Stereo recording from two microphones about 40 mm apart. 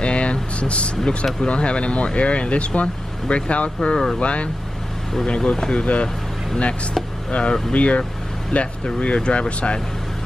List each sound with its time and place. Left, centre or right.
0.0 s vehicle: left
1.4 s speech: left
3.9 s speech: centre
4.2 s speech: left
7.2 s speech: left